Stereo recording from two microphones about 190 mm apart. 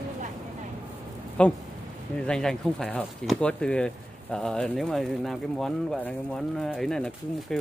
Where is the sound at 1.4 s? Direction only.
5° left (ahead or behind).